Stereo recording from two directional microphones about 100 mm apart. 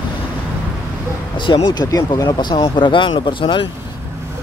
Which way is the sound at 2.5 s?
60° left (ahead or behind).